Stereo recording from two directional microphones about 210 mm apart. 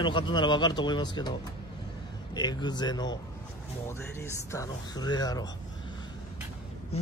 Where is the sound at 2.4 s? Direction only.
20° left (ahead or behind).